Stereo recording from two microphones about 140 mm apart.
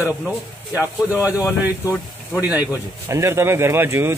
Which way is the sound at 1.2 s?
10° right (ahead or behind).